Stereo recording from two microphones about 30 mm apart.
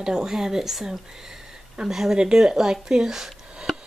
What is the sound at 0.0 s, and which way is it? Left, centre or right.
Speech, right.